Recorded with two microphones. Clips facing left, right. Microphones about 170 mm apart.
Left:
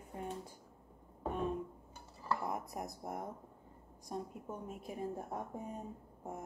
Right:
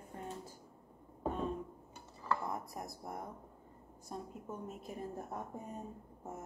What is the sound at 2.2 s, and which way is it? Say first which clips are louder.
Dishes: right 1 dB; 10° left (ahead or behind).